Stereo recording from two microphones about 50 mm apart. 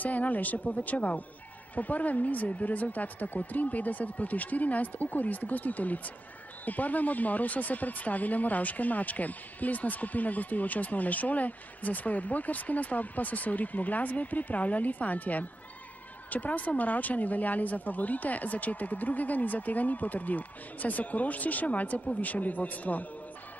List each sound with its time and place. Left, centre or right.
0.0 s speech: left